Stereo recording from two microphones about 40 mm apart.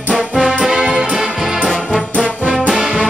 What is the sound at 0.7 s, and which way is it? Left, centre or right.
Music, centre.